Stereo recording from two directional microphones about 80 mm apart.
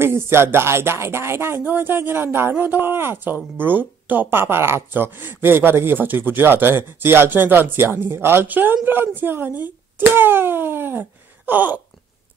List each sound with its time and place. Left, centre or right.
0.0 s speech: right